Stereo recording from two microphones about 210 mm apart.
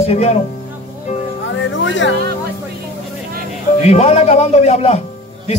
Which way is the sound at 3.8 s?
30° left (ahead or behind).